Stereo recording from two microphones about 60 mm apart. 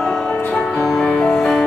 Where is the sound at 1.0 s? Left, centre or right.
Centre.